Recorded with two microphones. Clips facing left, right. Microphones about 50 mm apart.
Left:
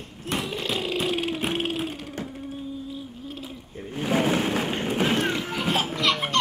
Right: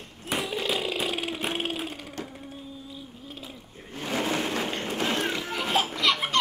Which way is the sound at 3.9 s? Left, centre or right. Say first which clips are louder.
Left 5 dB; centre.